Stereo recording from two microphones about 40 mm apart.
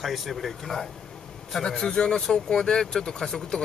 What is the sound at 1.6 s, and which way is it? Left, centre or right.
Speech, centre.